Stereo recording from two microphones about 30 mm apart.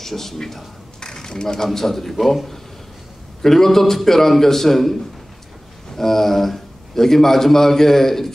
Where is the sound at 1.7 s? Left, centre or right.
Centre.